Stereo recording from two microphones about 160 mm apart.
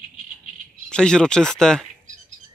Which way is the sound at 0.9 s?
5° left (ahead or behind).